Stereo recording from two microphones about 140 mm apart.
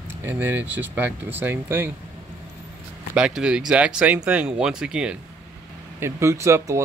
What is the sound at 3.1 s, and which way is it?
Speech, 5° right (ahead or behind).